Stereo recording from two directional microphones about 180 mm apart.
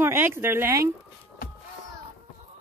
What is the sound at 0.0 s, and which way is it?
Speech, 15° right (ahead or behind).